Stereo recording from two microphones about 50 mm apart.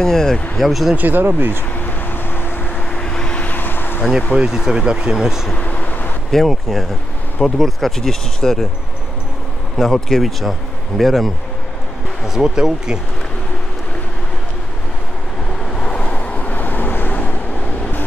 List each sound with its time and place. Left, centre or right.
0.0 s speech: centre
0.7 s speech: centre
0.9 s speech: right
1.8 s vehicle: left
2.7 s vehicle: centre
3.4 s vehicle: left
4.5 s speech: centre
5.6 s vehicle: left
6.3 s speech: centre
9.8 s speech: centre
12.3 s speech: centre
15.7 s vehicle: centre; by 17.4 s left